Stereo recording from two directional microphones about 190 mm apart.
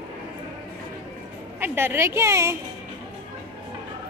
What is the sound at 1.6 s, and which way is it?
Speech, 10° right (ahead or behind).